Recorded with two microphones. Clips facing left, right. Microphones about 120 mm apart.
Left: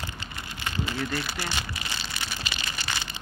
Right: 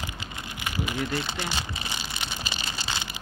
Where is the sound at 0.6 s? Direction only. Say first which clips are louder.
Right 1 dB; 15° right (ahead or behind).